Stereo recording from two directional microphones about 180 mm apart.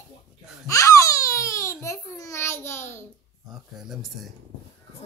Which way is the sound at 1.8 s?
15° left (ahead or behind).